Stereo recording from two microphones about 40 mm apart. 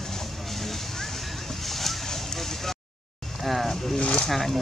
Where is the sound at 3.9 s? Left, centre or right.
Left.